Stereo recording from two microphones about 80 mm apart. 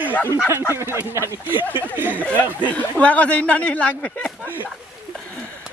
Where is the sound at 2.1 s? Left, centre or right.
Left.